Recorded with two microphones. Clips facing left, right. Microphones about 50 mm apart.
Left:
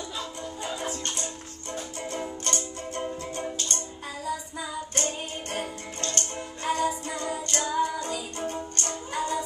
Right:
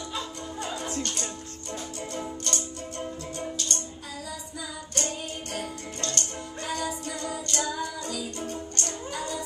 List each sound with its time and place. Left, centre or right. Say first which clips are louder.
0.6 s music: right 1 dB; left